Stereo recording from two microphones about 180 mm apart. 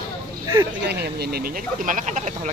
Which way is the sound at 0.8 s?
65° right (ahead or behind).